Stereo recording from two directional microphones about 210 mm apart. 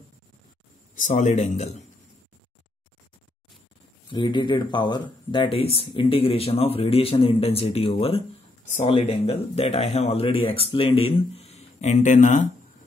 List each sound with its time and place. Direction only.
0.9 s speech: 35° left (ahead or behind)
4.1 s speech: 20° left (ahead or behind)